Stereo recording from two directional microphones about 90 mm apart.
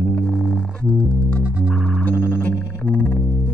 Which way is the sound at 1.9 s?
20° left (ahead or behind).